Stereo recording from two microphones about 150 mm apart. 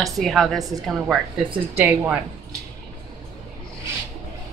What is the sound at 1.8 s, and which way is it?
Speech, 10° right (ahead or behind).